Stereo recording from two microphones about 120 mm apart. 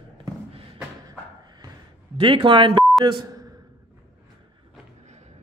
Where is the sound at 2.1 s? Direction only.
45° right (ahead or behind).